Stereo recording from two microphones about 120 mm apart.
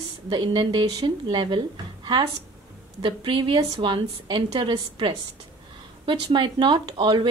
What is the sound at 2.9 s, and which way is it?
A woman's voice, 45° right (ahead or behind).